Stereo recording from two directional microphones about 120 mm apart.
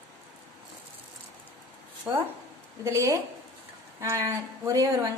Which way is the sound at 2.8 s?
25° right (ahead or behind).